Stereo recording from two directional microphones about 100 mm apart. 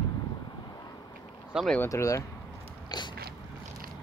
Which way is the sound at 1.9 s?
30° left (ahead or behind).